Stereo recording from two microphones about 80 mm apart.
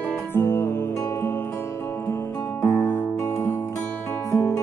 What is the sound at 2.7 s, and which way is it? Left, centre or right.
Music, left.